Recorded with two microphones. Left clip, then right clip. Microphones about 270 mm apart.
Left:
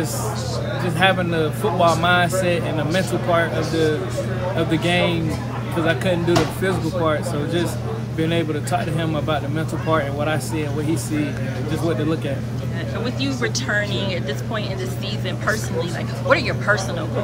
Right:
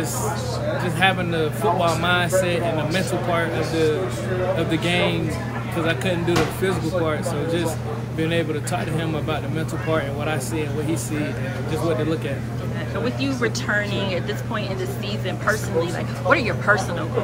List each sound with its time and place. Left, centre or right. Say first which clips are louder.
0.9 s speech: left 3 dB; centre
4.6 s speech: left 2 dB; centre
13.0 s speech: right 1 dB; centre